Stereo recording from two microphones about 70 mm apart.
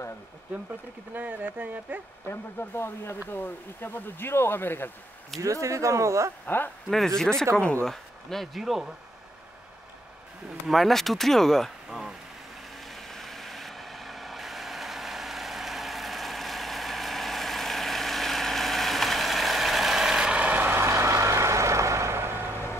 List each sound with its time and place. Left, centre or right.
1.1 s speech: right
2.2 s speech: left
5.4 s speech: right
6.4 s speech: left
7.2 s speech: centre
10.7 s speech: centre
12.8 s vehicle: centre; by 20.7 s right
20.7 s a sound: right